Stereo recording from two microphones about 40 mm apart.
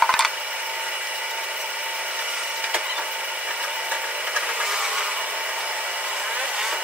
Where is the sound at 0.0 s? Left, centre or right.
Centre.